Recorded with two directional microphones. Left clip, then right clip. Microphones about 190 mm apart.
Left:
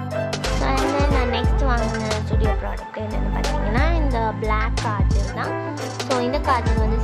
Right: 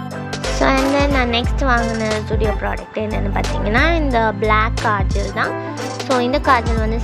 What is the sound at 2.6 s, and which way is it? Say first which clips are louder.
Speech: right 7 dB; 20° right (ahead or behind).